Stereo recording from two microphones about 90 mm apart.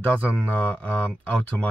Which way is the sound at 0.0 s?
15° left (ahead or behind).